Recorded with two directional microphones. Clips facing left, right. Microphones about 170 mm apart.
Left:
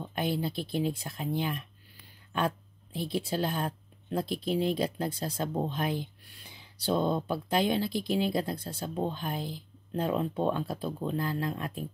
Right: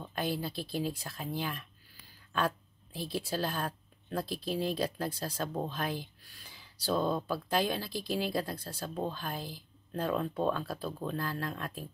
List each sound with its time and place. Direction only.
0.0 s speech: 20° left (ahead or behind)